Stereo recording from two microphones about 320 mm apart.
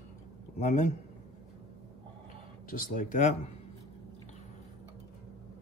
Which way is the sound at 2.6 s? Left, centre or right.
Left.